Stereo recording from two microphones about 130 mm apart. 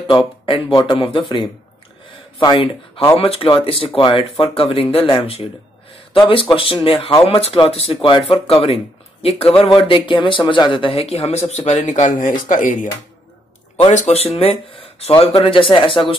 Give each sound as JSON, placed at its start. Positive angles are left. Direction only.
{"t": 0.5, "sound": "a man's voice", "side_deg": 40}
{"t": 3.2, "sound": "a man's voice", "side_deg": 50}
{"t": 13.8, "sound": "a man's voice", "side_deg": 55}